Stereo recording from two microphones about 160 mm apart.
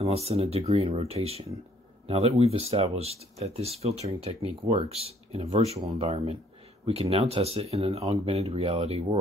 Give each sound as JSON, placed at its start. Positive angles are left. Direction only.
{"t": 0.0, "sound": "speech", "side_deg": -40}